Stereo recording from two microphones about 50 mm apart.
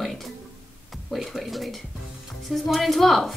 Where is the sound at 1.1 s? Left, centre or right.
Centre.